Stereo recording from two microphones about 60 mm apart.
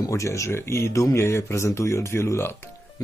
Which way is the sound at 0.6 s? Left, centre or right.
Left.